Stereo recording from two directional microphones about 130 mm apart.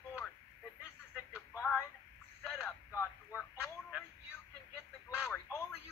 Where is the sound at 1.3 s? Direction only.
15° left (ahead or behind).